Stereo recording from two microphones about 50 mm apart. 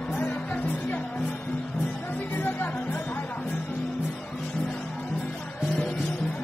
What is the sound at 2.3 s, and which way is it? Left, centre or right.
Music, left.